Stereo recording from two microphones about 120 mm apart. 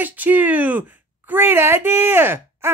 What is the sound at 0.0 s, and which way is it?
Music, 15° right (ahead or behind).